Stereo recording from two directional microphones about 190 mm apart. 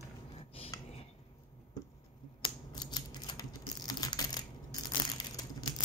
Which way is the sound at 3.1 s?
20° left (ahead or behind).